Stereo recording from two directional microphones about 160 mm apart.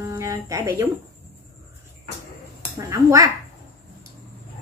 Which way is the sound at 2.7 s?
20° right (ahead or behind).